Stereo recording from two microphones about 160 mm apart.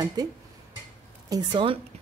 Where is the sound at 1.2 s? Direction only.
25° right (ahead or behind).